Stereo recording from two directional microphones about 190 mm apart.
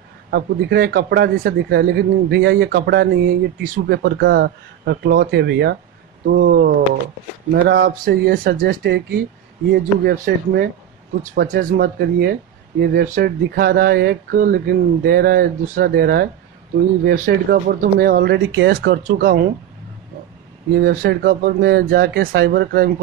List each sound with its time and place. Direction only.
0.3 s speech: 55° right (ahead or behind)
20.7 s speech: 55° right (ahead or behind)